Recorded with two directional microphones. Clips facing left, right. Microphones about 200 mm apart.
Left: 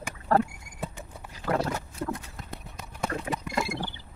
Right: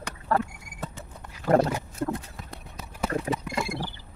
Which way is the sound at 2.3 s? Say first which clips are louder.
Even; centre (ahead or behind).